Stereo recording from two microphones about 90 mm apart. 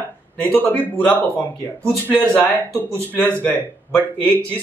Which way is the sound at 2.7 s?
25° left (ahead or behind).